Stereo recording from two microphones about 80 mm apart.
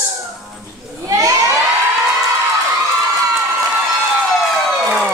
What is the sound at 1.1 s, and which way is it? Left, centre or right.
Children shouting, right.